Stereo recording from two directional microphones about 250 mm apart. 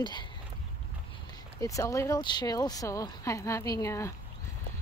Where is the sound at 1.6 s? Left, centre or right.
Centre.